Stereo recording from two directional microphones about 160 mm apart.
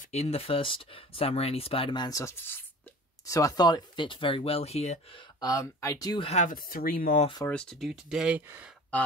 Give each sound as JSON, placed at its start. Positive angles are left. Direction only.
{"t": 0.0, "sound": "speech", "side_deg": 40}
{"t": 5.4, "sound": "speech", "side_deg": 20}
{"t": 6.2, "sound": "speech", "side_deg": 50}
{"t": 7.4, "sound": "speech", "side_deg": 5}